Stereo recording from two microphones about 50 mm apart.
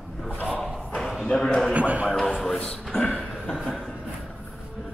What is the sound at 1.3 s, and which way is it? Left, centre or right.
Speech, centre.